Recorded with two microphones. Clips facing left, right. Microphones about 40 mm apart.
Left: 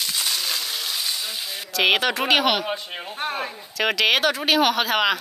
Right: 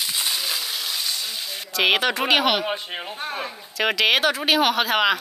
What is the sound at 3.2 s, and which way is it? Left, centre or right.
Speech, left.